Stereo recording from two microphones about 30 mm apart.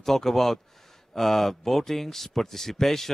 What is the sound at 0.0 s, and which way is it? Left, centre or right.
Speech, centre.